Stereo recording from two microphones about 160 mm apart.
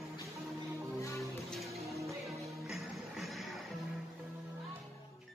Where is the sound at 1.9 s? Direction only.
20° right (ahead or behind).